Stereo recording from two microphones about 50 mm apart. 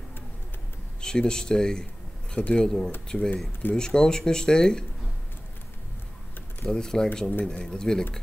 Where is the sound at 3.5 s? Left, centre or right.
Left.